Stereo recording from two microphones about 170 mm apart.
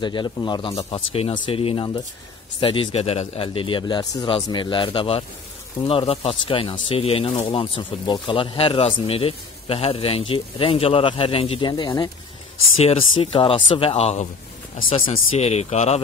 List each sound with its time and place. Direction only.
0.0 s speech: 25° left (ahead or behind)